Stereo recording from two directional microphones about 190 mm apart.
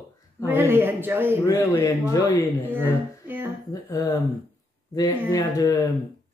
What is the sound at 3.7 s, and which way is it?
Speech, 20° left (ahead or behind).